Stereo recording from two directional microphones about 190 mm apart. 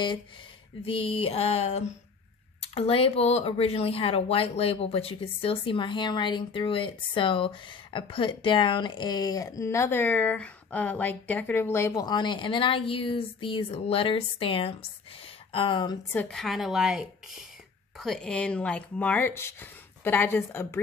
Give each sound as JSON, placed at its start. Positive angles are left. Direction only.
{"t": 0.8, "sound": "a sound", "side_deg": 30}
{"t": 2.6, "sound": "speech", "side_deg": 30}
{"t": 16.2, "sound": "a woman's voice", "side_deg": 0}